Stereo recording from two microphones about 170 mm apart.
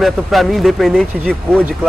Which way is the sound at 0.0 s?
Centre (ahead or behind).